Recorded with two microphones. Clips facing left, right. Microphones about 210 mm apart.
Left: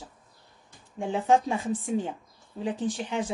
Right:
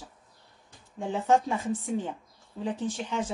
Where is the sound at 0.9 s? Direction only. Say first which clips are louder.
Left 1 dB; 15° left (ahead or behind).